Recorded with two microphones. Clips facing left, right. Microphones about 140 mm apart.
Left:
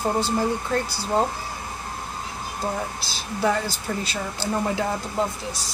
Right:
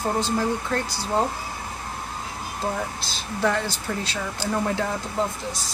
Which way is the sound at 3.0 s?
5° left (ahead or behind).